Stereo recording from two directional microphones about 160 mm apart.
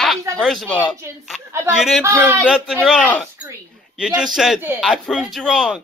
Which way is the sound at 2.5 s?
5° right (ahead or behind).